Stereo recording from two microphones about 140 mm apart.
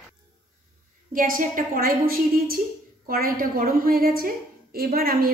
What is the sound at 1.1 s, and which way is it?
A woman's voice, 90° right.